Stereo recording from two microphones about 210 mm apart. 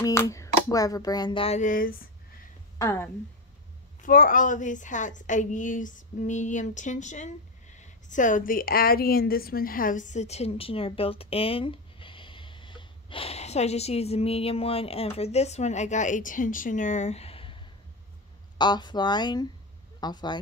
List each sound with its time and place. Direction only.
0.0 s speech: 15° left (ahead or behind); by 2.0 s 40° left (ahead or behind)
2.8 s speech: 15° left (ahead or behind)
4.0 s a woman's voice: 40° left (ahead or behind)
18.6 s speech: 20° left (ahead or behind)